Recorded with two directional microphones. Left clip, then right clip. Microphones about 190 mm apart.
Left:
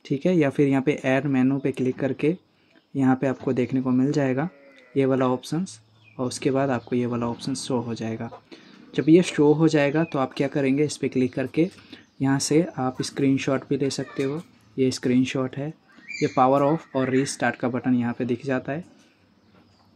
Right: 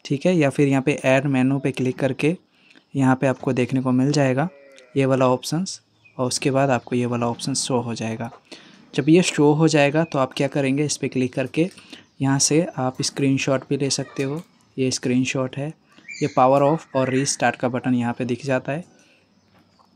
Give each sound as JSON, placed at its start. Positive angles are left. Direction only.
{"t": 0.0, "sound": "speech", "side_deg": -20}